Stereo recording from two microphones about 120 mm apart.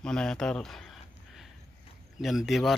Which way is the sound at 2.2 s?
Centre (ahead or behind).